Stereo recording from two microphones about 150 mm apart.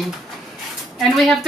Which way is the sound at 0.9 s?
Centre (ahead or behind).